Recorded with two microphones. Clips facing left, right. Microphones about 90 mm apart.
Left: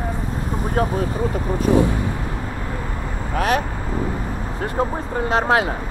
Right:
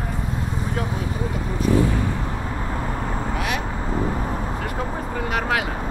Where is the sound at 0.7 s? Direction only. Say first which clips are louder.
Left 9 dB; 45° left (ahead or behind).